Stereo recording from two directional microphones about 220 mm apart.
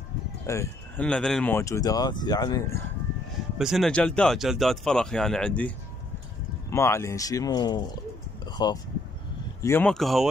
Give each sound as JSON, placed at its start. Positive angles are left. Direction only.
{"t": 0.5, "sound": "speech", "side_deg": 10}
{"t": 3.5, "sound": "speech", "side_deg": 0}
{"t": 6.7, "sound": "speech", "side_deg": 10}
{"t": 8.5, "sound": "a sound", "side_deg": 20}
{"t": 9.6, "sound": "speech", "side_deg": 10}